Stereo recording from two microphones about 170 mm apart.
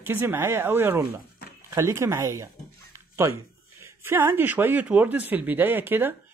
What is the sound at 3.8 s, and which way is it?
Speech, 15° right (ahead or behind).